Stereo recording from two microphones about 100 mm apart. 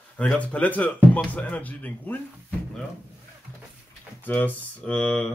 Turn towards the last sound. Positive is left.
turn(degrees=10)  # may be behind; listen again after turning